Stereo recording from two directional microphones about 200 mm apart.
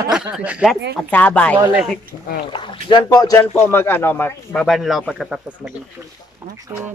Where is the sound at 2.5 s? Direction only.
25° left (ahead or behind); by 5.4 s 5° right (ahead or behind).